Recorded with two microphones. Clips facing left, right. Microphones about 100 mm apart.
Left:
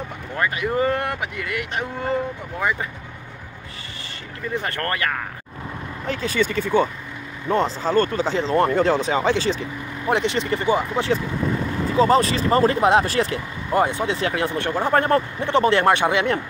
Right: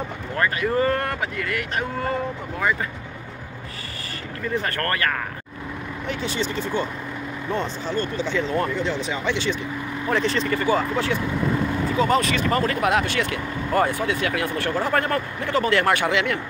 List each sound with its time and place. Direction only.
0.4 s speech: 15° left (ahead or behind)
4.6 s speech: 20° left (ahead or behind)
6.0 s speech: 40° left (ahead or behind)
8.5 s speech: 45° left (ahead or behind)
10.0 s speech: 20° left (ahead or behind)
12.0 s speech: 30° left (ahead or behind)
13.7 s speech: 20° left (ahead or behind)